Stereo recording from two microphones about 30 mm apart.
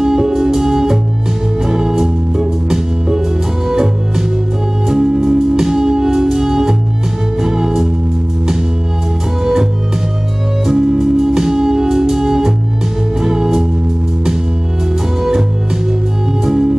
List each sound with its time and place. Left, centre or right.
0.0 s music: right
9.4 s music: right